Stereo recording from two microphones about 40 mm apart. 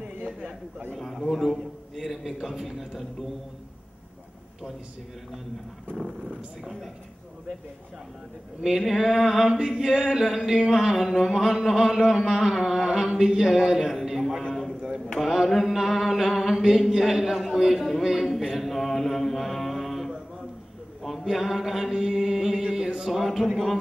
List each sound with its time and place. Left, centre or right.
0.9 s a man's voice: centre
2.0 s mantra: centre
6.6 s a woman's voice: centre
8.6 s mantra: centre
9.5 s a sound: centre
10.1 s mantra: centre
14.0 s a sound: centre
14.5 s a sound: centre
15.1 s mantra: centre
16.9 s a man's voice: centre
18.2 s mantra: centre
21.0 s chant: centre
22.8 s a sound: centre